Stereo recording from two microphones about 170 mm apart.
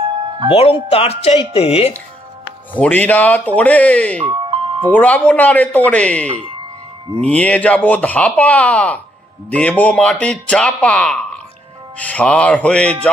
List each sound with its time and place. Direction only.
0.5 s speech: 35° left (ahead or behind)
2.7 s speech: 10° left (ahead or behind)
4.2 s music: 30° right (ahead or behind)
4.8 s speech: 10° left (ahead or behind)